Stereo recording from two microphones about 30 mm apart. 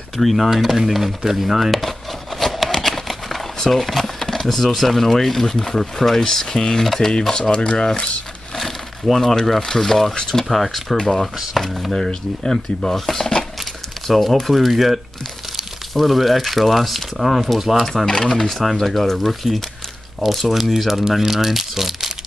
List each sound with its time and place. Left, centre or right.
0.2 s speech: centre
0.7 s speech: centre
2.4 s a sound: centre
3.5 s speech: centre
7.5 s speech: left
9.2 s speech: centre
12.1 s speech: centre
18.0 s speech: left
18.3 s speech: centre